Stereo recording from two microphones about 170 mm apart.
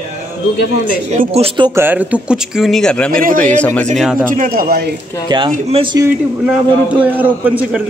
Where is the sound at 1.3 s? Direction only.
35° right (ahead or behind).